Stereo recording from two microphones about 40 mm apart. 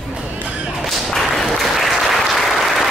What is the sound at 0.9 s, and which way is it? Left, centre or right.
Applause, centre.